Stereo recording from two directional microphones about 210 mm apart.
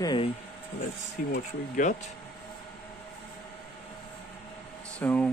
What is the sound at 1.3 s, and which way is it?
Speech, 35° left (ahead or behind).